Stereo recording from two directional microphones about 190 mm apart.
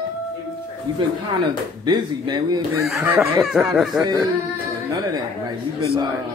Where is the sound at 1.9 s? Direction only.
25° right (ahead or behind).